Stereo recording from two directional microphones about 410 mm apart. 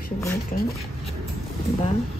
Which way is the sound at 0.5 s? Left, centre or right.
Centre.